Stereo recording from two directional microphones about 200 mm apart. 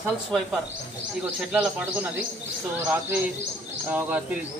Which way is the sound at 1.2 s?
5° right (ahead or behind).